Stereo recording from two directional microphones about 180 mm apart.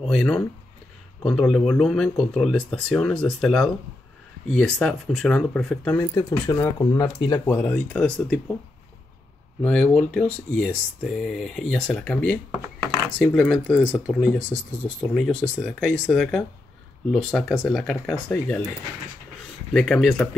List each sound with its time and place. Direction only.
0.0 s speech: centre (ahead or behind)
5.9 s speech: 20° left (ahead or behind)
7.4 s speech: 10° left (ahead or behind)
9.6 s speech: 5° left (ahead or behind)
12.4 s a sound: 15° right (ahead or behind)
13.2 s speech: 5° left (ahead or behind)
19.7 s speech: centre (ahead or behind)